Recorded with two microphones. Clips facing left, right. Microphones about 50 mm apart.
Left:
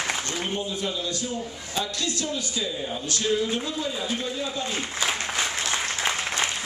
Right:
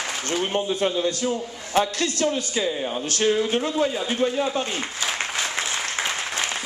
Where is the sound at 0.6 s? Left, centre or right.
Right.